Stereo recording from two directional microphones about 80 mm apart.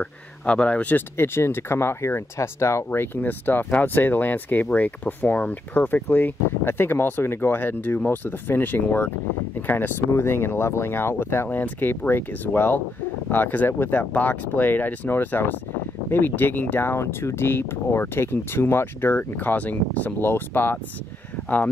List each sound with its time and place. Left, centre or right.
0.0 s speech: centre